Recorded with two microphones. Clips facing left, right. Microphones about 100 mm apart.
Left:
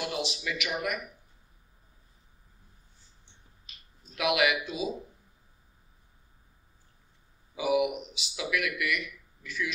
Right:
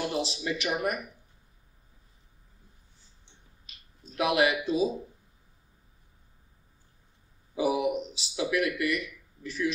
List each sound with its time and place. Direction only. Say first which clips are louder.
0.1 s speech: right 3 dB; 35° right (ahead or behind)
4.1 s speech: right 2 dB; 35° right (ahead or behind)
7.5 s speech: even; 35° right (ahead or behind)